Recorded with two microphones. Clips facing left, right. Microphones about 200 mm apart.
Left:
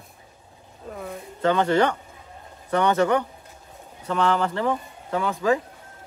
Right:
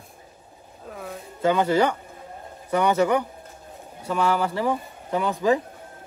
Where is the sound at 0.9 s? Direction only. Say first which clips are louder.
Left 2 dB; centre (ahead or behind); by 5.3 s 15° right (ahead or behind).